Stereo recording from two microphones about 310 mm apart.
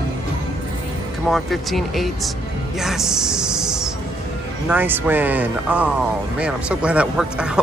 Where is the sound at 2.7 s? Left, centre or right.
Centre.